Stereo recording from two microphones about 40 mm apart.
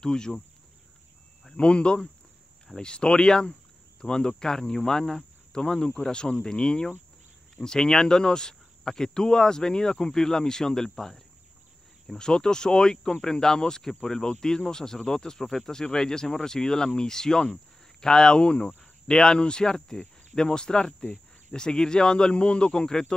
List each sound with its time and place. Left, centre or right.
0.0 s speech: centre
1.6 s speech: left; by 11.1 s centre
12.2 s speech: centre